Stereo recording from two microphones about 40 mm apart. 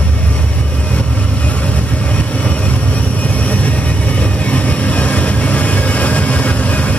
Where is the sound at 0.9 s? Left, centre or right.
Left.